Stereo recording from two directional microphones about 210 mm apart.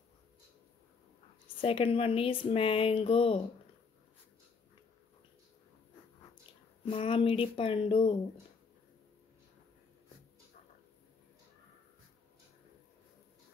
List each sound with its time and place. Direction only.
1.6 s speech: 25° left (ahead or behind)
6.9 s speech: 25° left (ahead or behind)